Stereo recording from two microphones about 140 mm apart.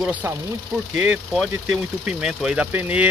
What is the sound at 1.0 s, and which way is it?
Speech, centre (ahead or behind).